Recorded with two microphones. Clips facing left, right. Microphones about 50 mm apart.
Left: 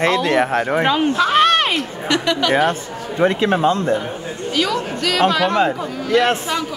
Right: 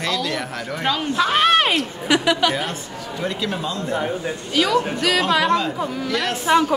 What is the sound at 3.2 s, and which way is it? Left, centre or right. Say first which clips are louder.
Speech: left 10 dB; left.